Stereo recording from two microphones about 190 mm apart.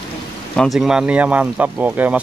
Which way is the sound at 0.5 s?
Centre (ahead or behind).